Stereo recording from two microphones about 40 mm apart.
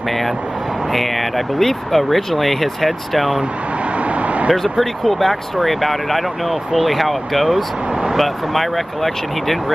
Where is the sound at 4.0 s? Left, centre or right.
Right.